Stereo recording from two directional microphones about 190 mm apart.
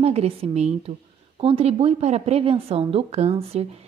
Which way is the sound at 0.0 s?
35° right (ahead or behind).